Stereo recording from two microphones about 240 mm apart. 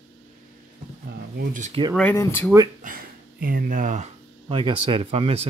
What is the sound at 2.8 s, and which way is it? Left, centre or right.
Speech, right.